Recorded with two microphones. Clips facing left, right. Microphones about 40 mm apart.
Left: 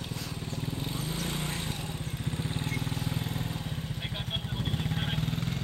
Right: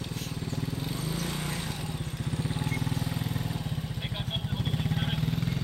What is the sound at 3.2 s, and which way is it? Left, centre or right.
Vehicle, left.